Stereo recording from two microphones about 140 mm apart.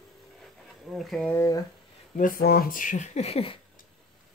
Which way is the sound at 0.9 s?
Centre (ahead or behind).